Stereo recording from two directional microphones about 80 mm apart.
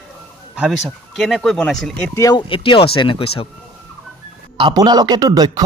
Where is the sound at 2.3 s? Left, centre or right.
Left.